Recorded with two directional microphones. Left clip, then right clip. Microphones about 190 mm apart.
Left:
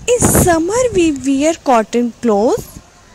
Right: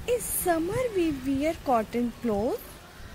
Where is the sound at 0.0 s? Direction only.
45° left (ahead or behind).